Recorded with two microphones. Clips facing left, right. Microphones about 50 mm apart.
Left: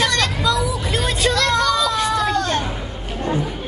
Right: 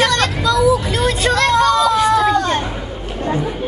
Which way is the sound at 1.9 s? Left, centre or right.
Centre.